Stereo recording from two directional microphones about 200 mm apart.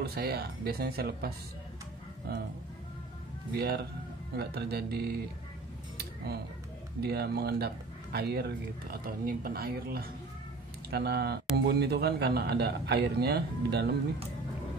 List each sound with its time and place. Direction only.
0.0 s speech: 50° right (ahead or behind)
3.5 s speech: 50° right (ahead or behind)
5.9 s a sound: 50° right (ahead or behind)
7.0 s speech: 55° right (ahead or behind)